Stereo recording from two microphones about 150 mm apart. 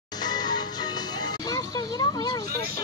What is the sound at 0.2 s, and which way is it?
Music, 30° left (ahead or behind).